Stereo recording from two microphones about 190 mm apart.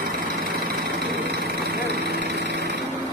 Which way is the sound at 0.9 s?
55° right (ahead or behind).